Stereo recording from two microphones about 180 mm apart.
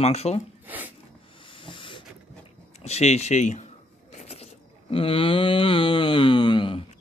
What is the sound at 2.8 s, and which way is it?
Speech, 35° left (ahead or behind).